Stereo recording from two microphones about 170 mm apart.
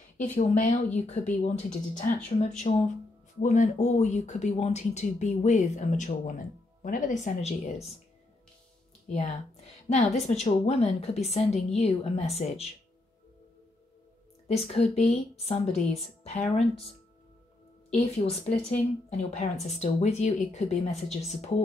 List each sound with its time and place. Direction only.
0.2 s speech: 50° left (ahead or behind)
2.7 s a woman's voice: 35° left (ahead or behind)
3.3 s speech: 45° left (ahead or behind)
9.1 s a woman's voice: 45° left (ahead or behind)
14.7 s a woman's voice: 35° left (ahead or behind)
17.9 s a woman's voice: 40° left (ahead or behind)